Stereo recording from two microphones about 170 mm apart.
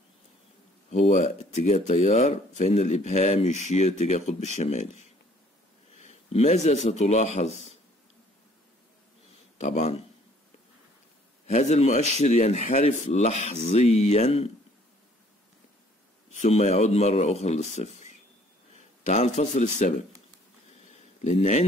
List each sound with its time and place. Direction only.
0.8 s speech: 40° left (ahead or behind)
5.9 s a man's voice: 40° left (ahead or behind)
9.6 s speech: 40° left (ahead or behind)
11.4 s speech: 40° left (ahead or behind)
16.3 s speech: 40° left (ahead or behind)
21.3 s speech: 45° left (ahead or behind)